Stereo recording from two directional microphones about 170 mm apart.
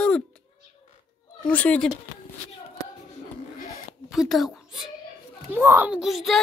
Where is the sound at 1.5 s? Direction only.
10° left (ahead or behind).